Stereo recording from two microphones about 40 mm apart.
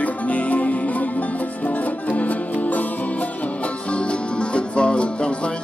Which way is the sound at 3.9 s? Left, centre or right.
Left.